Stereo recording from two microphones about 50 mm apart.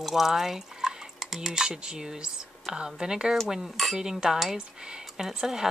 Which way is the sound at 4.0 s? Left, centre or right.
Centre.